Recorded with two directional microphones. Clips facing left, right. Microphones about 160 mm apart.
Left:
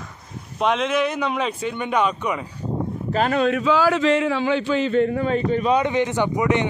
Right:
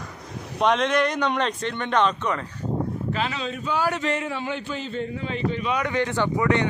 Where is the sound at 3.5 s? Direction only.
90° left; by 5.8 s 40° left (ahead or behind).